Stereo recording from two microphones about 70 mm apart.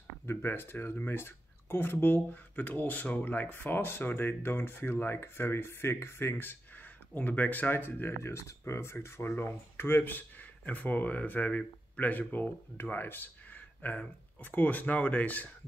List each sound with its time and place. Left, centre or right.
0.3 s speech: left